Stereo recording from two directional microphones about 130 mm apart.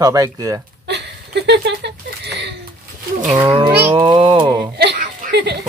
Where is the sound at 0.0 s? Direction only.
30° right (ahead or behind).